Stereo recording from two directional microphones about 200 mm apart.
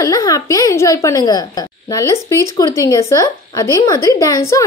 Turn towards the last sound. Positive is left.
turn(degrees=15)  # may be behind; listen again after turning